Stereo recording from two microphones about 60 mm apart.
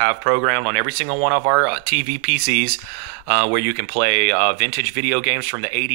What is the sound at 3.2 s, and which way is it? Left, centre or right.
Speech, centre.